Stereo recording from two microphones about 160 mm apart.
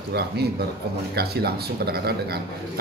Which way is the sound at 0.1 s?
90° right.